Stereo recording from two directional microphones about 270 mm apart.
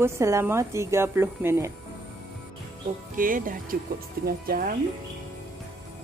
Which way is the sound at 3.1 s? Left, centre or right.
Right.